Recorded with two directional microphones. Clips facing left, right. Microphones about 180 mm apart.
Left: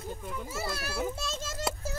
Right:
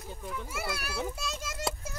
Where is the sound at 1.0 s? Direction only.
Centre (ahead or behind).